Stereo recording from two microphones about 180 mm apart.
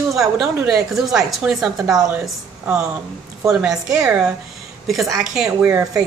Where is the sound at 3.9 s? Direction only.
5° right (ahead or behind).